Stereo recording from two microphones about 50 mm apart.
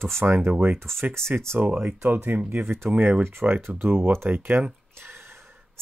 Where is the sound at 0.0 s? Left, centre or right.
Right.